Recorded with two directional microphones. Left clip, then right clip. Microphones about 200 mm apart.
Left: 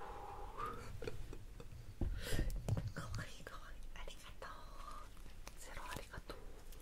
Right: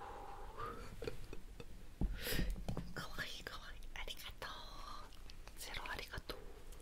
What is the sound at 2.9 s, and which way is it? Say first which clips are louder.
Whispering: right 5 dB; 25° right (ahead or behind).